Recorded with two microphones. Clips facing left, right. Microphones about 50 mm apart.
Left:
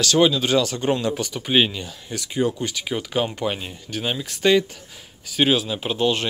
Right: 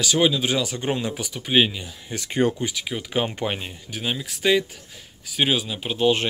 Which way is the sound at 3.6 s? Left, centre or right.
Centre.